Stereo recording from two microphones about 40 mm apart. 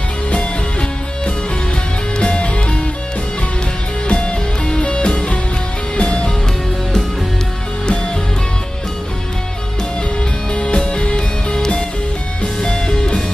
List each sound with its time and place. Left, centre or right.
0.3 s music: left
4.1 s music: left
10.5 s music: left